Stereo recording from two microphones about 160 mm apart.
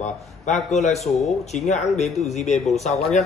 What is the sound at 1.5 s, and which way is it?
A man's voice, 45° left (ahead or behind).